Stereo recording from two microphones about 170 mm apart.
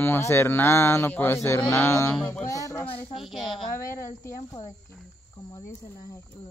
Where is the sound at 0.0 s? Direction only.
15° left (ahead or behind).